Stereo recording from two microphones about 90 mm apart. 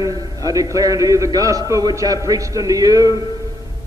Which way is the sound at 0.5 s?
40° right (ahead or behind).